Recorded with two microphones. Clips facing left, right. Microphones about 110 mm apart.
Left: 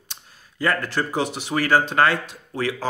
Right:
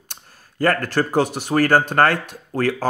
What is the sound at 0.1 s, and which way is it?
Speech, 50° right (ahead or behind).